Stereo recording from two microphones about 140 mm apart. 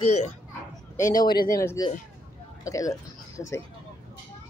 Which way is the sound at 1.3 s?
90° left.